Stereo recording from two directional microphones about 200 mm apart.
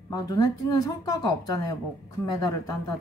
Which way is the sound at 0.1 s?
20° left (ahead or behind).